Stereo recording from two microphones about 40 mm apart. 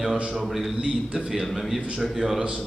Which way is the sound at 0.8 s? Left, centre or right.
Right.